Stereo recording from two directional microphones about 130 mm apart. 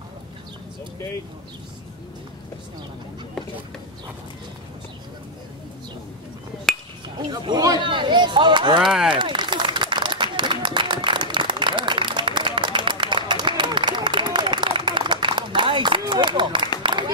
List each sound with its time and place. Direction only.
6.7 s chink: centre (ahead or behind)
7.2 s speech: 35° right (ahead or behind)
8.7 s speech: 5° right (ahead or behind)
9.1 s a sound: 40° right (ahead or behind)